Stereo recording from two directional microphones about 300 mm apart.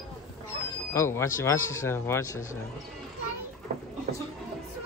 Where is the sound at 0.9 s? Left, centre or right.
Centre.